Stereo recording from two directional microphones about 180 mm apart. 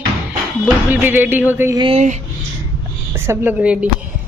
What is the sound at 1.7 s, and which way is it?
Speech, 30° right (ahead or behind).